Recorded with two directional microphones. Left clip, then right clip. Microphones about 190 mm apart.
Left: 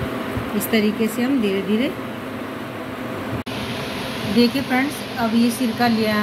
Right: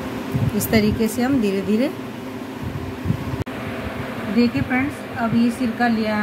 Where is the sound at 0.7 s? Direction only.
40° right (ahead or behind).